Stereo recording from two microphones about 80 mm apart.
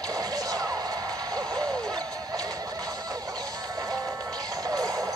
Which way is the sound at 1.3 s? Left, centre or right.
Right.